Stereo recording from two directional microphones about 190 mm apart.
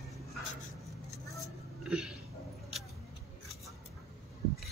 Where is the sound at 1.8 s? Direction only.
5° right (ahead or behind).